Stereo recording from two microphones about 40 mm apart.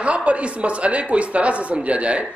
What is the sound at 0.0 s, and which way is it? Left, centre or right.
Speech, right.